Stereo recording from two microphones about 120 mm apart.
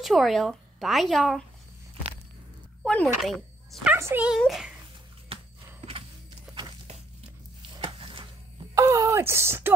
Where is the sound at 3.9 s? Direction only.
15° right (ahead or behind).